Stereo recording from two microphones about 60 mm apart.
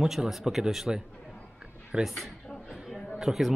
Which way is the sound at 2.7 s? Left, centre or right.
Centre.